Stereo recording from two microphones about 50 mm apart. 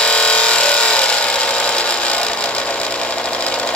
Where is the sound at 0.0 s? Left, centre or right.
Left.